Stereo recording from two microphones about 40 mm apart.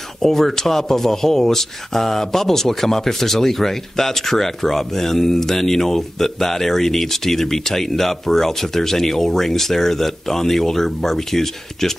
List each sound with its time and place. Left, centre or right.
0.2 s speech: centre